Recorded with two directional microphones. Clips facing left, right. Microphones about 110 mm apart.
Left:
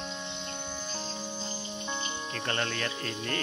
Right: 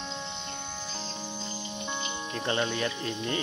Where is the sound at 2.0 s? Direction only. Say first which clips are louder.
Right 2 dB; 15° right (ahead or behind).